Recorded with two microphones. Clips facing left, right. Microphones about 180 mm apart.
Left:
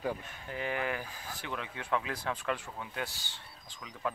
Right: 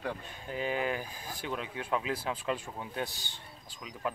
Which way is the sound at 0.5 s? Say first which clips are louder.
Right 2 dB; 15° right (ahead or behind).